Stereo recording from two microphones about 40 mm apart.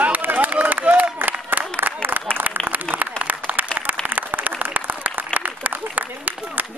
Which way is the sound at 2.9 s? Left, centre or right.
Left.